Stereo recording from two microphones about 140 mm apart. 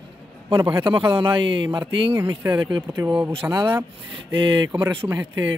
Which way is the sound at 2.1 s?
20° right (ahead or behind).